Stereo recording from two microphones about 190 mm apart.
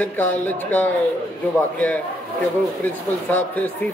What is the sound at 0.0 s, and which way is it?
Speech, 10° left (ahead or behind).